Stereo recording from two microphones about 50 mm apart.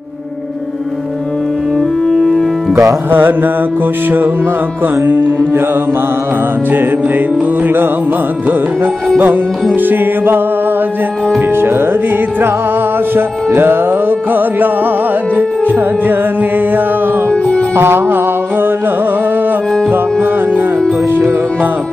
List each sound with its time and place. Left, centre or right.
2.0 s music: centre
3.1 s music: right
5.0 s music: right
7.6 s music: right
9.8 s music: right
11.5 s music: right
13.1 s music: right
17.3 s music: left
17.7 s music: right
19.9 s music: right